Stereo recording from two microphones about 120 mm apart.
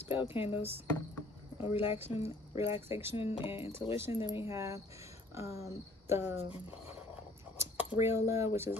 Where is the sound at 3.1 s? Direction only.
50° left (ahead or behind).